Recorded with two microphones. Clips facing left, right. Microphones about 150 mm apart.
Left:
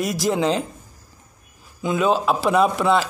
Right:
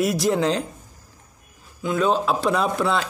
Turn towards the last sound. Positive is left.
turn(degrees=0)  # may be behind; listen again after turning